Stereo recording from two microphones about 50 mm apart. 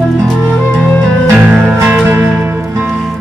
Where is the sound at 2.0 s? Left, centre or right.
Right.